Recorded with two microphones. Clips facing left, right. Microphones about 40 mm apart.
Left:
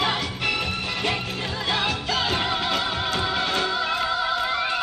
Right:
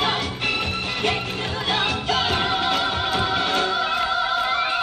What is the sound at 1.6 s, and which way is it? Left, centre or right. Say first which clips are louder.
Music: right 2 dB; centre.